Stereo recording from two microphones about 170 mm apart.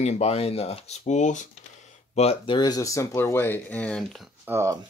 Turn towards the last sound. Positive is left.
turn(degrees=-15)  # may be behind; listen again after turning